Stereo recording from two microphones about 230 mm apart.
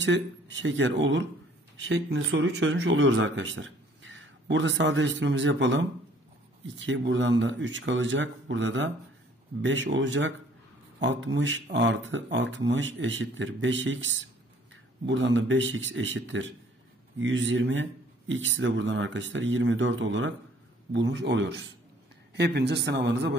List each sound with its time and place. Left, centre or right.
0.0 s speech: right